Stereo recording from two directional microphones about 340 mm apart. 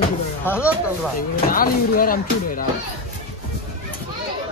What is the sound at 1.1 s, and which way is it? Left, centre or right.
Speech, left.